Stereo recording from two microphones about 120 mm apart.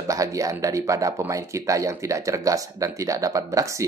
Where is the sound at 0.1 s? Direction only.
30° right (ahead or behind).